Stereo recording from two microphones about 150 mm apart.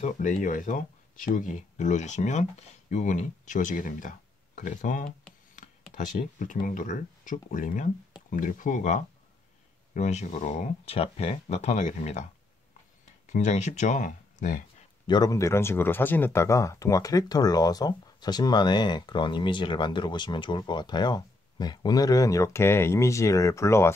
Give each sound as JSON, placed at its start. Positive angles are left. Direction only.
{"t": 0.0, "sound": "speech", "side_deg": 55}
{"t": 13.3, "sound": "speech", "side_deg": 50}
{"t": 15.0, "sound": "speech", "side_deg": 25}